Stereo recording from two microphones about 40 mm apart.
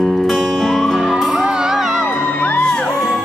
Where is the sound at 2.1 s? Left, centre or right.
Left.